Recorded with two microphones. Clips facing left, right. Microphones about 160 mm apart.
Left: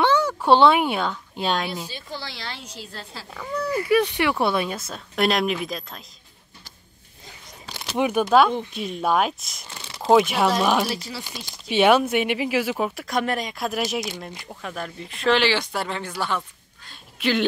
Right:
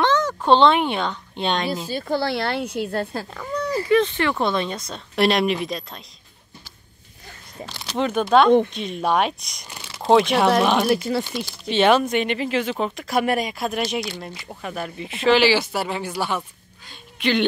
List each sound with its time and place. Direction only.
0.0 s speech: 10° left (ahead or behind)
1.9 s a woman's voice: 50° right (ahead or behind)
3.3 s a child's voice: 5° left (ahead or behind)
7.6 s speech: 10° left (ahead or behind)
10.9 s speech: 55° right (ahead or behind)
11.7 s speech: 10° left (ahead or behind)
13.1 s speech: 10° right (ahead or behind)
17.2 s speech: 5° left (ahead or behind)